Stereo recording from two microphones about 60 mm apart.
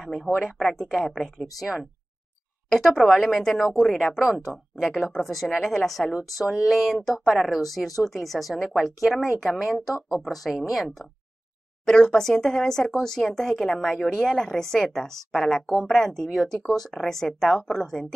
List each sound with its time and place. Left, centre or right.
0.0 s speech: centre
2.7 s speech: centre
11.8 s speech: centre